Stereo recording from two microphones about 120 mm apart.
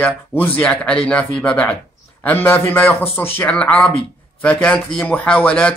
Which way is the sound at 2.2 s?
15° left (ahead or behind).